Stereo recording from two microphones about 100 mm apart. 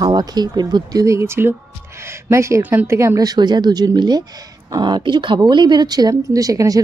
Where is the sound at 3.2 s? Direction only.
45° right (ahead or behind).